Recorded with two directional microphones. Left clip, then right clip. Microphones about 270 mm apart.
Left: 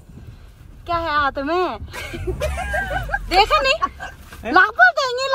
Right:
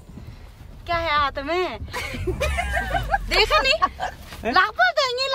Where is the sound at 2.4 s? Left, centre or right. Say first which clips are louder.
Right 1 dB; left.